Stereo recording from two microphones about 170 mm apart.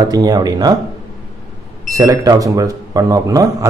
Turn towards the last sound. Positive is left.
turn(degrees=-20)  # may be behind; listen again after turning